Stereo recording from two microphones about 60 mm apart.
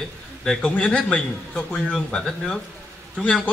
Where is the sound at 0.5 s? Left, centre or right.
Centre.